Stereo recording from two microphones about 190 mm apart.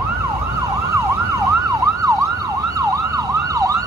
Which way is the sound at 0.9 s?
15° right (ahead or behind).